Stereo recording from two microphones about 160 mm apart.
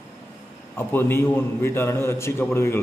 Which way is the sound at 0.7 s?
15° left (ahead or behind).